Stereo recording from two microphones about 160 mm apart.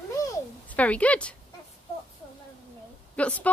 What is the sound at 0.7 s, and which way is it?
Speech, 10° left (ahead or behind).